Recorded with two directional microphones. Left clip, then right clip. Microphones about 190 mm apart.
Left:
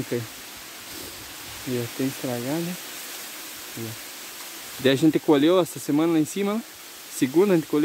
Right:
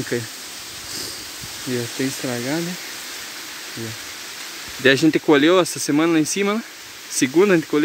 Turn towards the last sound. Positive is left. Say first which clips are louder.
# right 4 dB
turn(degrees=5)  # may be behind; listen again after turning